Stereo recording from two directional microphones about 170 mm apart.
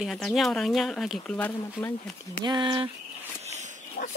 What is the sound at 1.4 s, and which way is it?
Speech, 15° left (ahead or behind).